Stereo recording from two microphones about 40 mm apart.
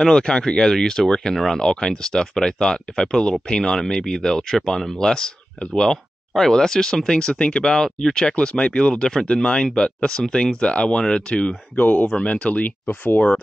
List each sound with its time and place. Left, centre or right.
0.0 s speech: centre
1.3 s speech: centre
1.6 s speech: centre
11.7 s speech: left
12.3 s speech: left
12.6 s speech: left